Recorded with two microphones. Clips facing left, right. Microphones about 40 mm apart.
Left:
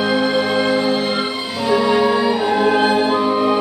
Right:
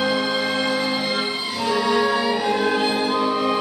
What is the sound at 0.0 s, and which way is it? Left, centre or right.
Music, left.